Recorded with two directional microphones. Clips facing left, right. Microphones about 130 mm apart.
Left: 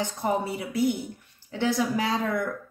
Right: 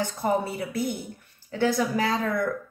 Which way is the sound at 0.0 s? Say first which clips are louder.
Right 1 dB; 15° left (ahead or behind).